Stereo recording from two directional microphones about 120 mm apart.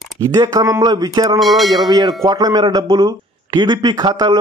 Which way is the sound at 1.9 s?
30° right (ahead or behind).